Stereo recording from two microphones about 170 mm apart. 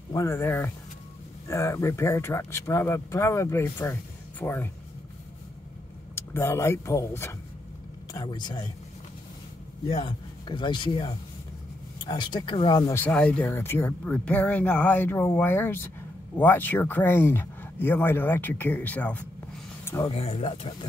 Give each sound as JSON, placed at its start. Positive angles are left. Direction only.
{"t": 0.1, "sound": "speech", "side_deg": 15}
{"t": 6.1, "sound": "a man's voice", "side_deg": 15}
{"t": 9.8, "sound": "a man's voice", "side_deg": 30}
{"t": 12.9, "sound": "speech", "side_deg": 10}
{"t": 19.8, "sound": "a sound", "side_deg": 15}
{"t": 20.1, "sound": "speech", "side_deg": 35}